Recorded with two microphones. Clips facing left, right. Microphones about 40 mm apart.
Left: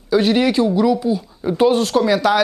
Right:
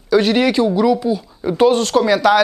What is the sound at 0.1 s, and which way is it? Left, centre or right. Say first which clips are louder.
Speech: right 1 dB; right.